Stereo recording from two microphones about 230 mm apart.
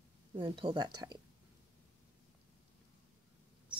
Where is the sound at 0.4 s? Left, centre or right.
Right.